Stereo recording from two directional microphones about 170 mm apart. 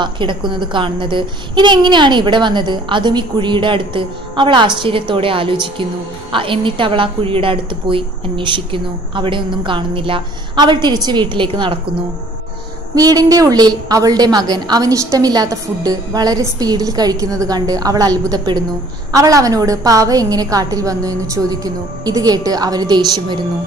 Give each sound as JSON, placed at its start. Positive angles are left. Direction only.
{"t": 0.0, "sound": "a child's voice", "side_deg": -30}
{"t": 12.9, "sound": "a child's voice", "side_deg": -20}